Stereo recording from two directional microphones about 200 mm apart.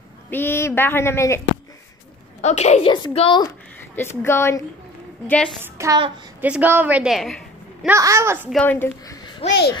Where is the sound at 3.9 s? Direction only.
10° left (ahead or behind).